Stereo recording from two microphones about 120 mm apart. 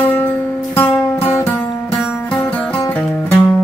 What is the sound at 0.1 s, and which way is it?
Music, 10° left (ahead or behind).